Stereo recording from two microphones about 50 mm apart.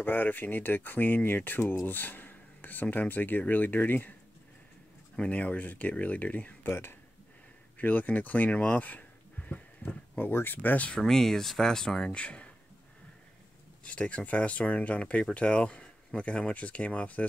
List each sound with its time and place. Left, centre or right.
0.0 s speech: left
5.1 s speech: centre
5.4 s speech: left
6.7 s speech: left
7.7 s speech: left
11.0 s speech: centre
12.1 s speech: left
13.8 s speech: left